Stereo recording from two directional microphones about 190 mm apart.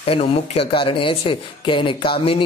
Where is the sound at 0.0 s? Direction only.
30° left (ahead or behind).